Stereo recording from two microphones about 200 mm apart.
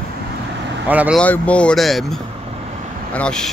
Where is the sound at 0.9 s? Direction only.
5° right (ahead or behind).